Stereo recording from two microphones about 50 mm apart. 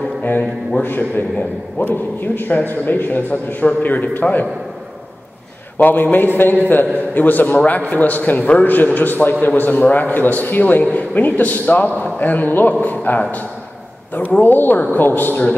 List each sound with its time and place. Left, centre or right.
0.2 s speech: left
1.8 s a man's voice: left
5.8 s a man's voice: left